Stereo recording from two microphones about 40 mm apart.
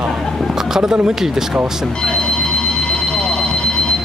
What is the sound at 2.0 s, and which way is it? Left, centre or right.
Alarm clock, centre.